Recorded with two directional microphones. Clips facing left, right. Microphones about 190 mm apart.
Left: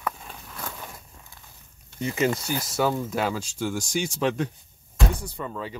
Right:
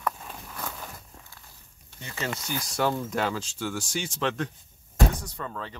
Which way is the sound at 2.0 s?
15° left (ahead or behind).